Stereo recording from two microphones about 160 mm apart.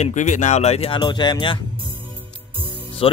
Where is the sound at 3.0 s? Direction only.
35° left (ahead or behind).